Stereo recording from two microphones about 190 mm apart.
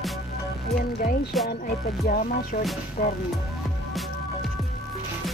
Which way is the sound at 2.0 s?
50° left (ahead or behind).